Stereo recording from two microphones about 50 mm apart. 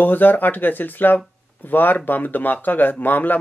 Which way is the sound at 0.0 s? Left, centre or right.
Left.